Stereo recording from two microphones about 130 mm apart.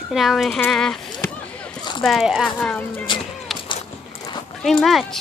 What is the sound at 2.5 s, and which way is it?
Speech, 10° left (ahead or behind).